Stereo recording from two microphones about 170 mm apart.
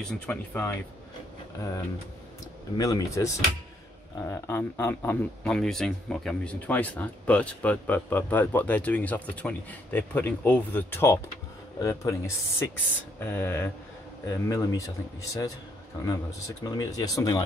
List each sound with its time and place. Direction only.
0.0 s speech: 5° left (ahead or behind)
2.8 s a man's voice: 20° left (ahead or behind)
16.1 s a man's voice: 20° left (ahead or behind)